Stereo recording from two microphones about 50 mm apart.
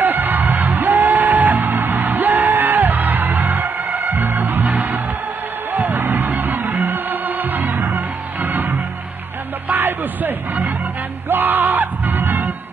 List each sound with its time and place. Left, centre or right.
0.0 s music: right
9.8 s a sound: right
11.2 s music: right